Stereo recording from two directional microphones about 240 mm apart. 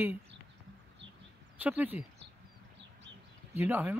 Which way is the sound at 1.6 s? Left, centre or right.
Centre.